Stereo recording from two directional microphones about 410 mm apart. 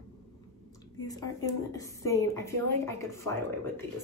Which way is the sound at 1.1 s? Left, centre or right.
Centre.